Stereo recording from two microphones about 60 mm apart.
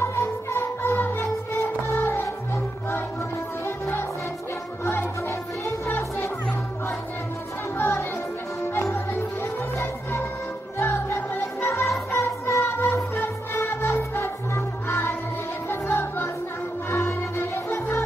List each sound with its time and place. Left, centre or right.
0.0 s music: left
2.2 s music: left
7.7 s music: left
12.2 s music: left
12.6 s music: left